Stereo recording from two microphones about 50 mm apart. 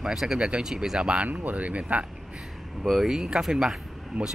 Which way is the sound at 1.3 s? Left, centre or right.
Right.